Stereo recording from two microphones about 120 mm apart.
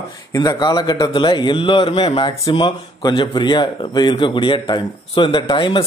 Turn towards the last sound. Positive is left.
turn(degrees=45)  # may be behind; listen again after turning